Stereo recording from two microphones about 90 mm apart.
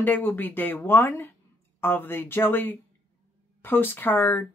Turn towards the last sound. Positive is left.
turn(degrees=20)  # may be behind; listen again after turning